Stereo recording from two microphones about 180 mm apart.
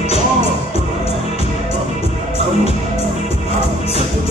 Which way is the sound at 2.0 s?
35° left (ahead or behind).